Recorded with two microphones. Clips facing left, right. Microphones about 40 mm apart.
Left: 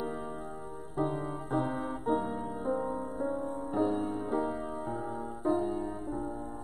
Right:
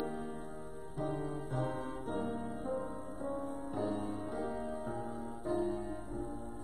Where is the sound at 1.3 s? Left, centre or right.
Left.